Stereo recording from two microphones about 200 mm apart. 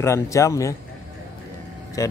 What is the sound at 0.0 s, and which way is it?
Speech, 15° left (ahead or behind).